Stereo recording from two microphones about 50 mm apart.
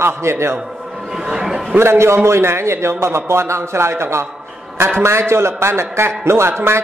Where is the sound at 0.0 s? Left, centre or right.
Right.